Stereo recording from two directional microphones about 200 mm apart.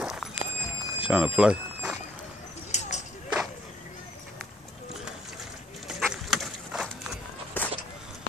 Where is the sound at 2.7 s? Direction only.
35° left (ahead or behind).